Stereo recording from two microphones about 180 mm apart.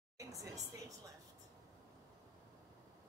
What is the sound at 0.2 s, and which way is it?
Speech, 20° right (ahead or behind).